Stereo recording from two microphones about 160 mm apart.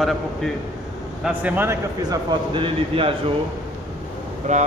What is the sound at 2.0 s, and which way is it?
Speech, 30° right (ahead or behind).